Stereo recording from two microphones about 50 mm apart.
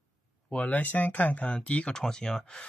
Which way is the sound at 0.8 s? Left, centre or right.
Left.